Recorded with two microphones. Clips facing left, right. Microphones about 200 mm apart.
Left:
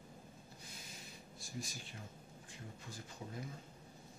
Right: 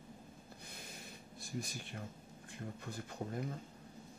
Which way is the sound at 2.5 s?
60° right (ahead or behind).